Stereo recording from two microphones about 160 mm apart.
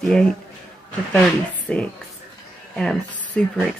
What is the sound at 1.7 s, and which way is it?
Speech, 5° left (ahead or behind).